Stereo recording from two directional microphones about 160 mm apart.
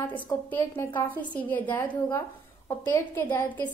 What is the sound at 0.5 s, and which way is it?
A woman's voice, 10° left (ahead or behind).